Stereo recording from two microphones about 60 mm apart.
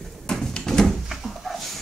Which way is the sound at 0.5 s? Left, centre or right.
Centre.